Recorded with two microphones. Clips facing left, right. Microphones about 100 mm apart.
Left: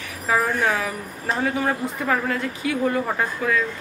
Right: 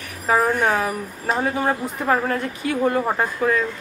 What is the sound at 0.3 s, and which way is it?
Speech, 35° right (ahead or behind).